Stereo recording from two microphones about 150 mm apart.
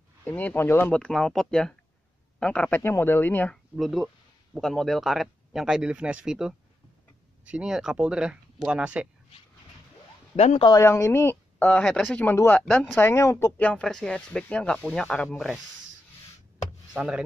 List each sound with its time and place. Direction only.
0.2 s speech: 10° left (ahead or behind)
3.7 s speech: centre (ahead or behind)
7.5 s speech: 5° right (ahead or behind)
10.3 s speech: 40° left (ahead or behind)
10.7 s speech: 20° left (ahead or behind); by 15.6 s centre (ahead or behind)
16.9 s speech: 5° right (ahead or behind)